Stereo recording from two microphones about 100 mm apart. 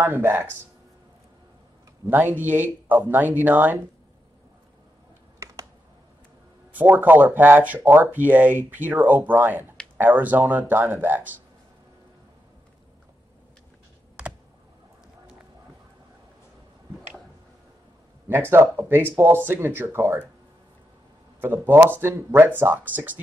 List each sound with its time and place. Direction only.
0.0 s speech: 20° right (ahead or behind)
2.0 s speech: 20° right (ahead or behind)
5.4 s computer keyboard: 30° right (ahead or behind)
6.7 s speech: 20° right (ahead or behind)
14.2 s computer keyboard: 10° right (ahead or behind)
18.3 s speech: 25° right (ahead or behind)
21.4 s speech: 20° right (ahead or behind)